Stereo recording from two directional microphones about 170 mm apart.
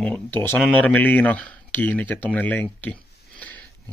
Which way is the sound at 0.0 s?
10° left (ahead or behind).